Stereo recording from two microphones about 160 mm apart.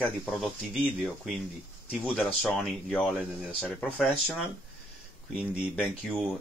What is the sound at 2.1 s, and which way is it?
Speech, 5° left (ahead or behind).